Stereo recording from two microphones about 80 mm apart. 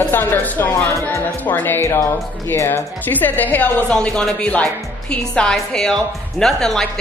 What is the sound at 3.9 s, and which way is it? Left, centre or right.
A woman's voice, centre.